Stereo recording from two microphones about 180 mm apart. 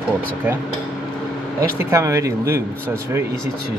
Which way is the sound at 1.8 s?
15° right (ahead or behind).